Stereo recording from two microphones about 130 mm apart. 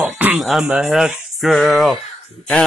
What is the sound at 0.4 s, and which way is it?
Speech, 5° right (ahead or behind).